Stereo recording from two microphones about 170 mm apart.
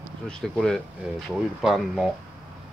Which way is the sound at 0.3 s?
5° left (ahead or behind).